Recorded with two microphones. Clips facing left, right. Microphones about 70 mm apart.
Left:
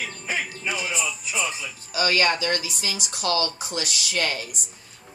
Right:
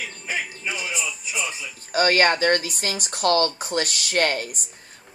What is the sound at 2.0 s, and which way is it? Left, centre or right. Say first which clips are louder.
A woman's voice: right 4 dB; right.